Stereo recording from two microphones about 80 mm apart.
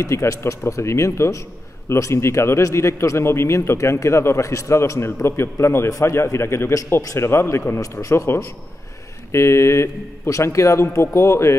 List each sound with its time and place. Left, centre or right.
0.0 s a man's voice: left